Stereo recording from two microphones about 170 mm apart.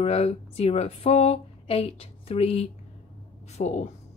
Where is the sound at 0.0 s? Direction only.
35° left (ahead or behind).